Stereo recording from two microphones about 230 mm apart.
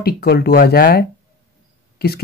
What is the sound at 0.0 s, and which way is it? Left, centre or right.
Speech, left.